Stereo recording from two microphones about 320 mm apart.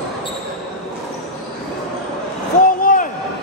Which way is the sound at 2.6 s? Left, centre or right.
Left.